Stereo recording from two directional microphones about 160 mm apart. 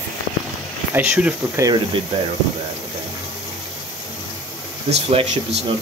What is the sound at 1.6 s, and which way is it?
Speech, 25° right (ahead or behind).